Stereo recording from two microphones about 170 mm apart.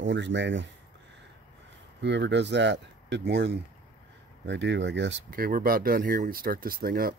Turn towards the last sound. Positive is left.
turn(degrees=-60)  # may be behind; listen again after turning